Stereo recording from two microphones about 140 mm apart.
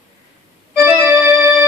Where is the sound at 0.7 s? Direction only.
15° right (ahead or behind).